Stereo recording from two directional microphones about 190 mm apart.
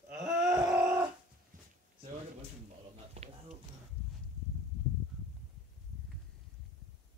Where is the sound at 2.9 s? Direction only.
35° right (ahead or behind).